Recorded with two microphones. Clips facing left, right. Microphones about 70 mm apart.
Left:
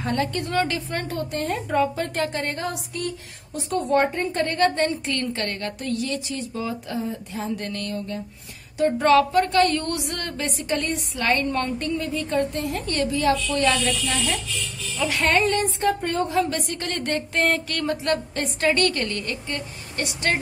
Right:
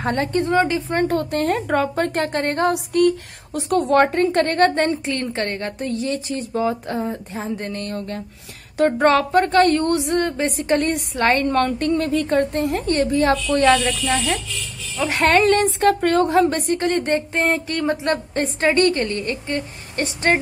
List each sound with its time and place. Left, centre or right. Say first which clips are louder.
0.0 s speech: right 5 dB; right
1.0 s a sound: right 7 dB; right
2.0 s a woman's voice: right 5 dB; right
5.0 s a woman's voice: right 3 dB; right
7.3 s speech: right 2 dB; right
8.7 s a woman's voice: right 2 dB; right
10.4 s a woman's voice: right 7 dB; right
15.2 s a sound: right 6 dB; right
16.3 s speech: right 7 dB; right